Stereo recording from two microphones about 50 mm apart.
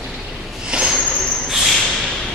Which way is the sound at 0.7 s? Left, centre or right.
Right.